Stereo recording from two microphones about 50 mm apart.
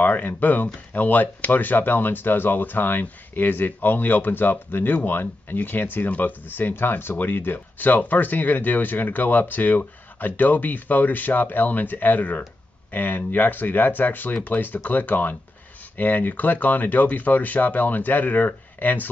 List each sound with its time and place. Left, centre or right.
0.0 s speech: left